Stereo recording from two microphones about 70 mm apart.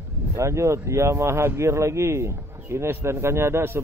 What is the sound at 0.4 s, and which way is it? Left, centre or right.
Speech, right.